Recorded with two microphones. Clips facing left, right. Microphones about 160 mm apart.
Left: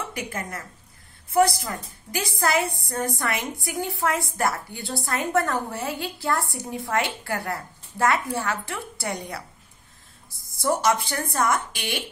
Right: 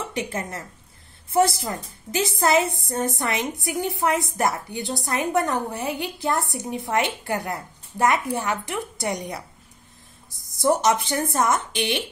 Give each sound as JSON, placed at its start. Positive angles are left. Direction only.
{"t": 0.1, "sound": "a woman's voice", "side_deg": -25}
{"t": 10.6, "sound": "a woman's voice", "side_deg": -20}